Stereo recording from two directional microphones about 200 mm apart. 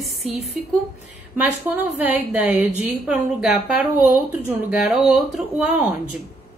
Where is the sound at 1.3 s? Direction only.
10° right (ahead or behind).